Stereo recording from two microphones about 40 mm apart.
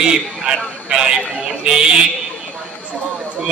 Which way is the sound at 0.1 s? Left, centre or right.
Centre.